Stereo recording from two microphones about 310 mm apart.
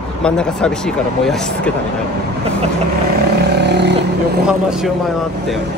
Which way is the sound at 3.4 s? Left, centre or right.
Right.